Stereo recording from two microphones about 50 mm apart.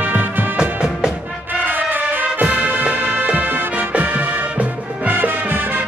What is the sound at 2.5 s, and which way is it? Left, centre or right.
Music, right.